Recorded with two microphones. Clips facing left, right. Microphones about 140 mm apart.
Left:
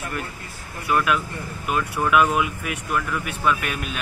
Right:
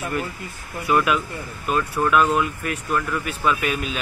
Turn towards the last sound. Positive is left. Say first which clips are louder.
# right 1 dB
turn(degrees=0)  # may be behind; listen again after turning